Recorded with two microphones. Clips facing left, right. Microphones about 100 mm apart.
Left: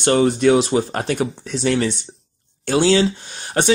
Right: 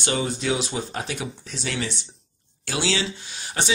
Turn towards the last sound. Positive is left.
turn(degrees=50)  # may be behind; listen again after turning